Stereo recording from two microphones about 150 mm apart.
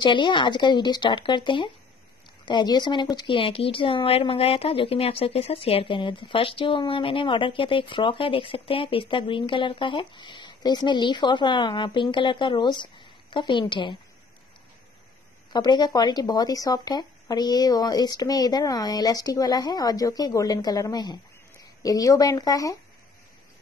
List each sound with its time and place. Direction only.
0.0 s speech: 30° left (ahead or behind)
15.5 s speech: 30° left (ahead or behind)